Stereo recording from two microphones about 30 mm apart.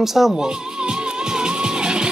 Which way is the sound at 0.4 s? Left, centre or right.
Right.